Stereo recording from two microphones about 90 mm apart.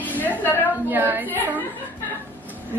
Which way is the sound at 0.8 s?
20° right (ahead or behind).